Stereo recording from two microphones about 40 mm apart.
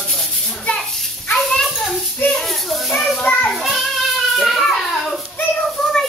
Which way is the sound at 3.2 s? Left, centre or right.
Left.